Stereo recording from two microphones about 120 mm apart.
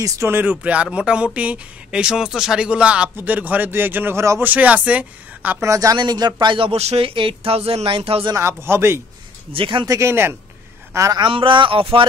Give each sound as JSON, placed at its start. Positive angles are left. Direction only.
{"t": 0.0, "sound": "speech", "side_deg": -25}
{"t": 5.7, "sound": "speech", "side_deg": -30}
{"t": 8.4, "sound": "speech", "side_deg": -20}
{"t": 9.5, "sound": "speech", "side_deg": -45}
{"t": 9.8, "sound": "a man's voice", "side_deg": -25}
{"t": 11.1, "sound": "speech", "side_deg": -45}